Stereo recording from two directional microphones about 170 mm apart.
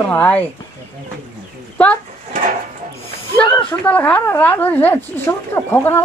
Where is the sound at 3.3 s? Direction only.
10° left (ahead or behind).